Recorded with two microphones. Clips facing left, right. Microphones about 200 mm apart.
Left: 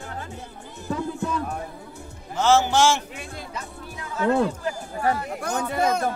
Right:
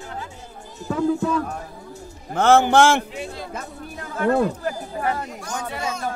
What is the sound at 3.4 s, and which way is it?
Speech, 50° right (ahead or behind).